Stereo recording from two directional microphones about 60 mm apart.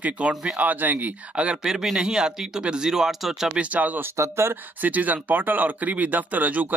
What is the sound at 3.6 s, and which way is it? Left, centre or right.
Speech, right.